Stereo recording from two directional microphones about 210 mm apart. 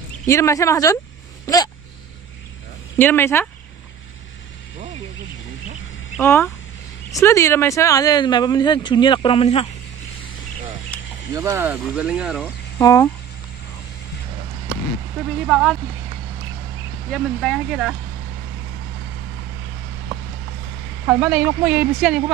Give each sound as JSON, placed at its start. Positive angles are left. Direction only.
{"t": 0.3, "sound": "speech", "side_deg": 15}
{"t": 3.0, "sound": "speech", "side_deg": 10}
{"t": 6.2, "sound": "speech", "side_deg": 10}
{"t": 10.9, "sound": "a sound", "side_deg": 5}
{"t": 11.3, "sound": "speech", "side_deg": -15}
{"t": 12.7, "sound": "speech", "side_deg": 15}
{"t": 15.4, "sound": "speech", "side_deg": 0}
{"t": 17.1, "sound": "speech", "side_deg": 0}
{"t": 21.1, "sound": "speech", "side_deg": -5}